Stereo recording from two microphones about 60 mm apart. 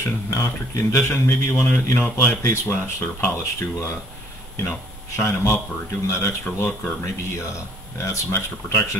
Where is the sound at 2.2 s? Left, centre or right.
Left.